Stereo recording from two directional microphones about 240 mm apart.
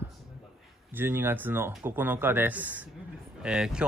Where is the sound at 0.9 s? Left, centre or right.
Centre.